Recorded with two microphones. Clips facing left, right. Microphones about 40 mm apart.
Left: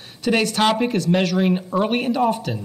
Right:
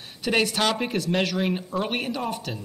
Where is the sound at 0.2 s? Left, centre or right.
Centre.